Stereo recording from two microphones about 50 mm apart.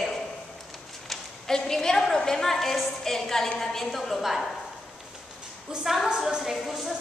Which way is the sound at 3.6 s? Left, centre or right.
Centre.